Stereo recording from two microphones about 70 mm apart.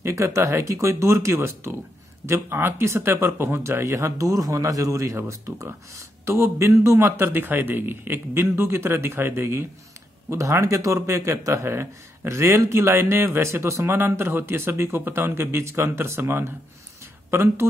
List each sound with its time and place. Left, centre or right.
0.0 s speech: right
10.3 s speech: right